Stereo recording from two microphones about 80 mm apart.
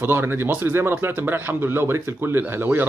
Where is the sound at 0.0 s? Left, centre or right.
Right.